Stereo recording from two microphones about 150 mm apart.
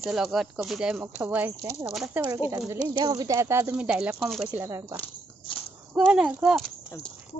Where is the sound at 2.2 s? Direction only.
25° right (ahead or behind).